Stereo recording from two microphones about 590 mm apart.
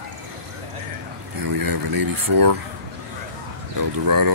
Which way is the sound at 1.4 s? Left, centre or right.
Right.